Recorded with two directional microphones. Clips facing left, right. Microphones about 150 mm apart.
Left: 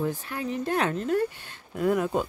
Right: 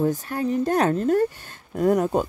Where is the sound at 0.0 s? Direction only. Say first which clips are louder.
Right 6 dB; 40° right (ahead or behind).